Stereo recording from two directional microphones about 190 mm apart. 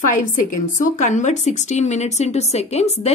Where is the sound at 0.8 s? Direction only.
40° left (ahead or behind).